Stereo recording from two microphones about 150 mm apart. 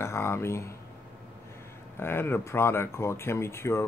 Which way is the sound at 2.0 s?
15° left (ahead or behind).